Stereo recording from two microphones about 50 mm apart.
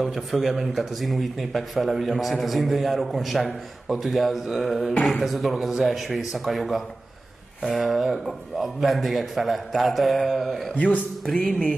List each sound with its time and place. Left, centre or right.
0.0 s speech: centre
10.7 s a man's voice: left